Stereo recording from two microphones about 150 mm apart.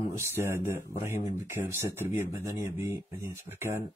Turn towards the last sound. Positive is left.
turn(degrees=-15)  # may be behind; listen again after turning